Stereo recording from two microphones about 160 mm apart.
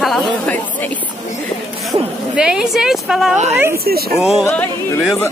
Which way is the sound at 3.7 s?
70° right (ahead or behind).